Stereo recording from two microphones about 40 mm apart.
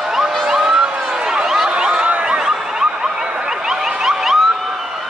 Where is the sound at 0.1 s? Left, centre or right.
Centre.